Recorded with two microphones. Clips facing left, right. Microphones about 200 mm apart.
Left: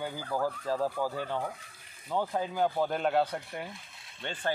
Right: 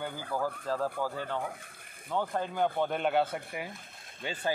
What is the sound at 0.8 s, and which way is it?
Speech, 10° left (ahead or behind).